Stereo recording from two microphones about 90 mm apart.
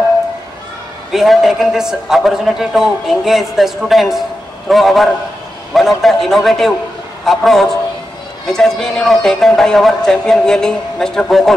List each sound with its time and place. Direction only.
1.1 s a man's voice: centre (ahead or behind)